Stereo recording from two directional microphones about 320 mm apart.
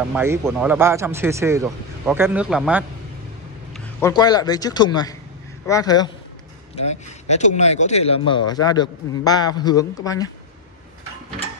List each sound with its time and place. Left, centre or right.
0.1 s speech: centre